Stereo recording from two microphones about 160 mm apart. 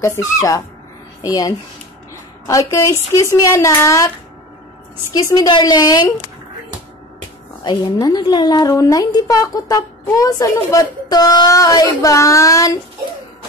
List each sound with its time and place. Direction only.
0.0 s a woman's voice: 20° left (ahead or behind)
2.7 s a woman's voice: 15° left (ahead or behind)
5.1 s a woman's voice: 25° left (ahead or behind)
7.6 s a woman's voice: 25° left (ahead or behind)